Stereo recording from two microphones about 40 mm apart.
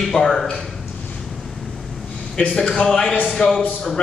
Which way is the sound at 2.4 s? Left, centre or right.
Left.